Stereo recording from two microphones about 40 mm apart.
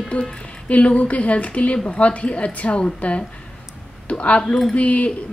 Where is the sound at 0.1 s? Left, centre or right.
Left.